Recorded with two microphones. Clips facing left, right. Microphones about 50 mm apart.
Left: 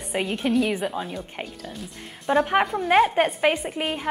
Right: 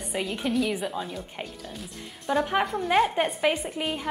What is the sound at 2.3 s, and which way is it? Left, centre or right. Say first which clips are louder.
A woman's voice: left 4 dB; left.